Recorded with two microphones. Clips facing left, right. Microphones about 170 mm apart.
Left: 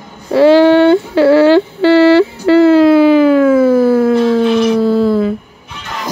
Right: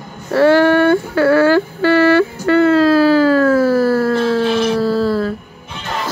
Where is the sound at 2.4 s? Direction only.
25° left (ahead or behind).